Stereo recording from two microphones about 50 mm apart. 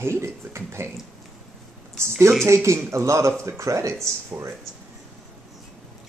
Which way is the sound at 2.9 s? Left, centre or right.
Right.